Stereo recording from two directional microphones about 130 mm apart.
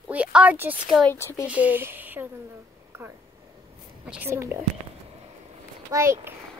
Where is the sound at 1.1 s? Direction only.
20° left (ahead or behind).